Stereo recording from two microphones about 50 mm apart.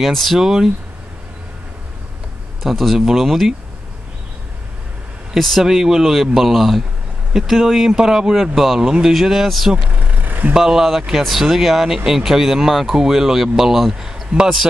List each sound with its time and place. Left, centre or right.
0.0 s speech: centre
2.6 s speech: centre
5.6 s speech: centre
9.8 s vehicle: right
10.5 s speech: centre